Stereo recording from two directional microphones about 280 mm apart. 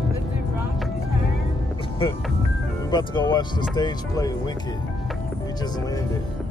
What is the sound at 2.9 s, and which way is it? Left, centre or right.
Speech, centre.